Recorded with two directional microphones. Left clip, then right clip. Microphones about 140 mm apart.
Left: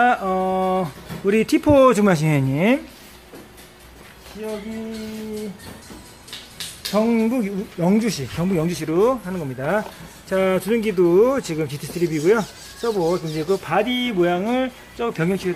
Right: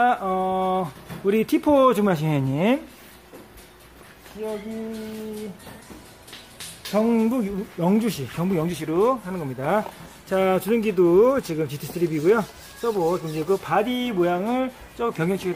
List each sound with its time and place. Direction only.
0.0 s speech: 5° right (ahead or behind)
7.1 s speech: 15° right (ahead or behind)